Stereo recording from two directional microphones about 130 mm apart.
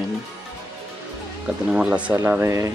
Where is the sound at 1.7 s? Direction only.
10° right (ahead or behind).